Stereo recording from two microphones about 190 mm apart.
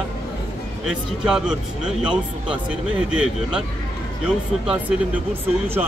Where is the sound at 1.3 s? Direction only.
5° right (ahead or behind).